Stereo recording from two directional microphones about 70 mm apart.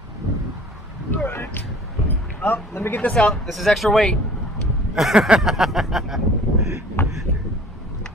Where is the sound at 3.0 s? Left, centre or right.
Centre.